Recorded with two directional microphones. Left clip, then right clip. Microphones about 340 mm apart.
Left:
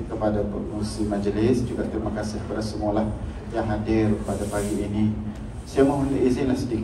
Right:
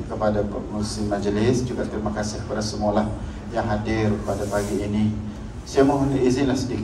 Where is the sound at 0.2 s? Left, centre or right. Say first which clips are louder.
Right 2 dB; right.